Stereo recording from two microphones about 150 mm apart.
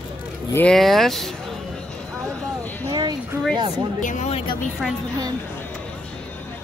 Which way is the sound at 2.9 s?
30° right (ahead or behind).